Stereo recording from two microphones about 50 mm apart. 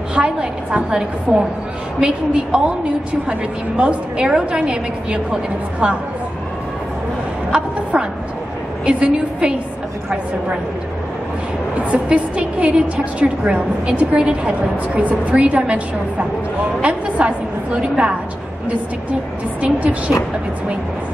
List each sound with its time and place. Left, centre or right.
0.1 s a woman's voice: right
7.5 s a woman's voice: centre
11.7 s a woman's voice: right
19.6 s a woman's voice: right